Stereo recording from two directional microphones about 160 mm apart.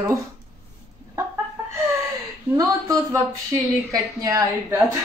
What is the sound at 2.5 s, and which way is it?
Speech, 20° right (ahead or behind).